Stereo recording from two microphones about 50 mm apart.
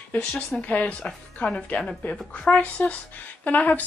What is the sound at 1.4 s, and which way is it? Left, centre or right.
Speech, centre.